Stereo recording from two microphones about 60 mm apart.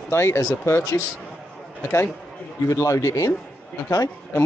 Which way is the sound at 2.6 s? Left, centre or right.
Left.